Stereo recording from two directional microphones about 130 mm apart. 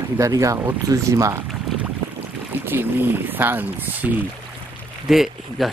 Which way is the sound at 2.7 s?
15° right (ahead or behind).